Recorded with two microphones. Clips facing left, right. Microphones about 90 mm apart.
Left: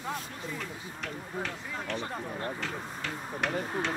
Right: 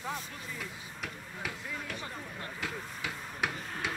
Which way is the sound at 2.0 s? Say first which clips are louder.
Left 6 dB; 35° left (ahead or behind).